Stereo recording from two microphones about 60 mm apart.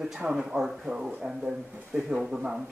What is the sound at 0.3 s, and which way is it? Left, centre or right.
Speech, centre.